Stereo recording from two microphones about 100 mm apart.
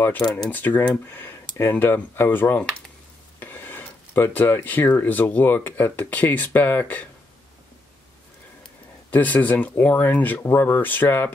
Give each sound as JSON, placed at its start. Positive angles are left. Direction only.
{"t": 0.5, "sound": "speech", "side_deg": 15}
{"t": 9.1, "sound": "speech", "side_deg": 15}